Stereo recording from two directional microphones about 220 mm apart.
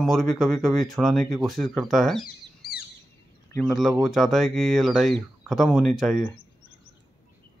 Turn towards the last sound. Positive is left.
turn(degrees=0)  # may be behind; listen again after turning